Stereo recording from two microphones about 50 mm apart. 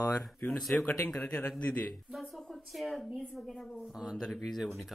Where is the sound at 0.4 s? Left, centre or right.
Left.